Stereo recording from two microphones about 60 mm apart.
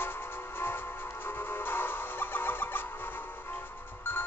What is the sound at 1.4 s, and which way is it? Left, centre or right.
Music, left.